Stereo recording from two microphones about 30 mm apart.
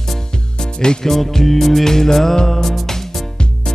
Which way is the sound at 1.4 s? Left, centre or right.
Centre.